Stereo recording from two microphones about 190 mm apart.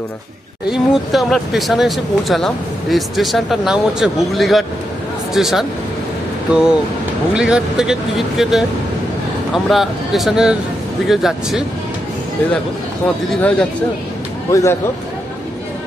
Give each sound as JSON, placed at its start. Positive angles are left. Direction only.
{"t": 0.7, "sound": "speech", "side_deg": 0}
{"t": 13.3, "sound": "speech", "side_deg": 5}